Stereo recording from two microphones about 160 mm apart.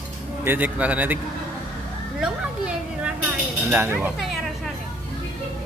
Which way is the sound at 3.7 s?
15° right (ahead or behind).